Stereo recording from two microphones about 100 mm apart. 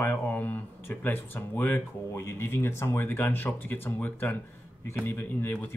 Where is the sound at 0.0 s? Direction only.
15° left (ahead or behind).